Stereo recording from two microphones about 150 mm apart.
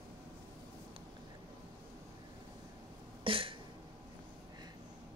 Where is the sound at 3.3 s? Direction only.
35° right (ahead or behind).